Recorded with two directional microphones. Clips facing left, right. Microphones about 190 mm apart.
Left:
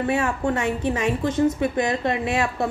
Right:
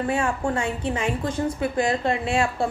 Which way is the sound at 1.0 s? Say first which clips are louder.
Left 6 dB; 25° left (ahead or behind).